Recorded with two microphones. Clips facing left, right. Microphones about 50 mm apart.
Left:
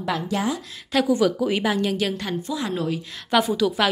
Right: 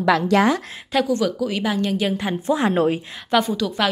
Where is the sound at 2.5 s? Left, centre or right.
Right.